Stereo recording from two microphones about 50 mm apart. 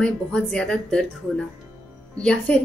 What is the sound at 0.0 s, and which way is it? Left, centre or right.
Speech, centre.